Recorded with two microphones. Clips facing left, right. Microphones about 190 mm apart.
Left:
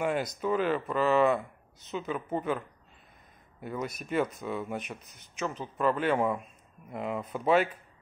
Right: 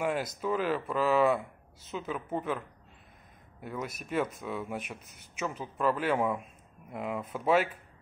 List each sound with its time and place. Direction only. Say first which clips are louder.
0.0 s speech: left 2 dB; 5° right (ahead or behind)
3.6 s speech: left 2 dB; centre (ahead or behind)